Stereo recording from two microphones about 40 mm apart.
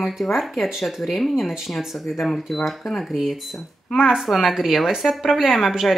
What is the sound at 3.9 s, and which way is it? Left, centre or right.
Speech, centre.